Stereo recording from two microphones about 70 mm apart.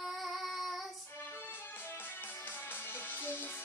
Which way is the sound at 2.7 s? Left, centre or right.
Left.